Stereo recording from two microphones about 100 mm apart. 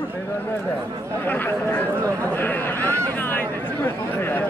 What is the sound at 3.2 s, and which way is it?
Chatter, 20° left (ahead or behind).